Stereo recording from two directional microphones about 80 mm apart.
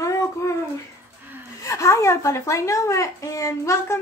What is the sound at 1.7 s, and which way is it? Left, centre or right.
A woman's voice, left.